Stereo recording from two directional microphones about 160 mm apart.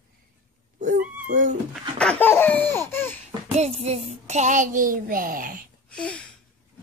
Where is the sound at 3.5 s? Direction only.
40° right (ahead or behind); by 5.6 s 65° right (ahead or behind).